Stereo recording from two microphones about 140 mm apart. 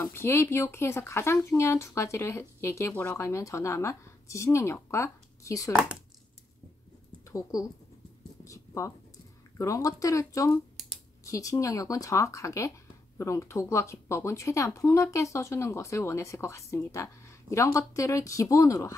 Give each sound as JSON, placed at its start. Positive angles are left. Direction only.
{"t": 0.0, "sound": "speech", "side_deg": 15}
{"t": 7.2, "sound": "speech", "side_deg": 25}
{"t": 8.5, "sound": "a sound", "side_deg": 20}
{"t": 9.6, "sound": "speech", "side_deg": 25}